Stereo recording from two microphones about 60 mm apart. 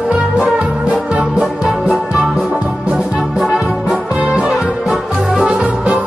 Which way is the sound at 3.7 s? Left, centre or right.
Centre.